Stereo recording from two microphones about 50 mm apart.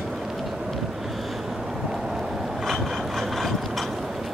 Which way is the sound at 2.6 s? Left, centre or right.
Centre.